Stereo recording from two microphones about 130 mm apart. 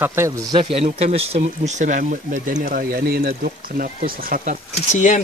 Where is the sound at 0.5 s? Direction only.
45° right (ahead or behind); by 4.5 s 90° right.